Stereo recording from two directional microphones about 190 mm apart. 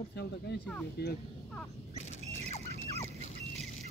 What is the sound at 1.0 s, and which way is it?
Speech, 60° left (ahead or behind).